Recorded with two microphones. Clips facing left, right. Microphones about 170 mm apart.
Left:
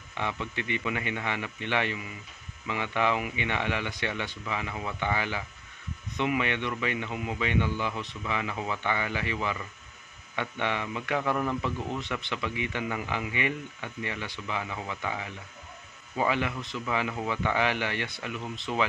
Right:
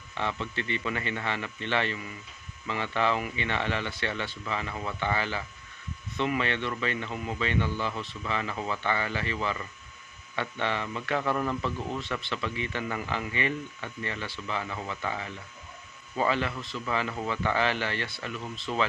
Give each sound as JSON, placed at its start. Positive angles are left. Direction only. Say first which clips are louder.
{"t": 0.1, "sound": "a man's voice", "louder": "right 1 dB", "side_deg": 15}